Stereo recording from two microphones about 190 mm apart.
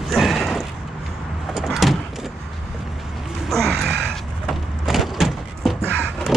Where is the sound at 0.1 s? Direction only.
Centre (ahead or behind).